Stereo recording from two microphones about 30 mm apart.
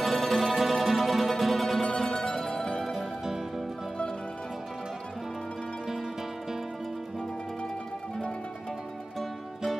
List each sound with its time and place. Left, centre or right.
0.0 s music: centre; by 2.8 s left
2.9 s music: centre